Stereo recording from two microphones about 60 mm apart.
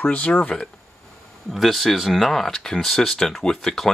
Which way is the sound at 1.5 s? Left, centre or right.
Centre.